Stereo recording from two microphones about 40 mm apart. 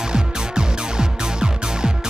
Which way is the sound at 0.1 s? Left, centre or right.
Centre.